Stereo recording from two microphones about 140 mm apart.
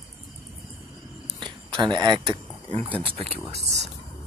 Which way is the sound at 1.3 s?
35° right (ahead or behind).